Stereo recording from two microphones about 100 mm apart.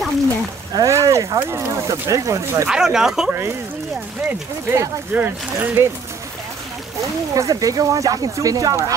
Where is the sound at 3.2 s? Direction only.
25° right (ahead or behind).